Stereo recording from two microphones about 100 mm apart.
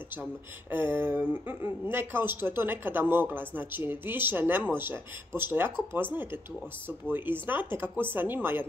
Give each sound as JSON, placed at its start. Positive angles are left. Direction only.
{"t": 0.7, "sound": "speech", "side_deg": -20}